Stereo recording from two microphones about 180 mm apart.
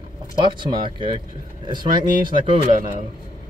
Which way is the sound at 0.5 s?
25° right (ahead or behind).